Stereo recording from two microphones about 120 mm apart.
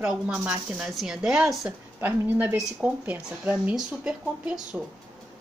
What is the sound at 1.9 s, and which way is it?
Speech, 15° right (ahead or behind).